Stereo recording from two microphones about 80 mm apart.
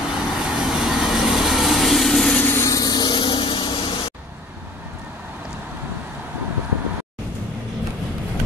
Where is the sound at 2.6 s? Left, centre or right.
Left.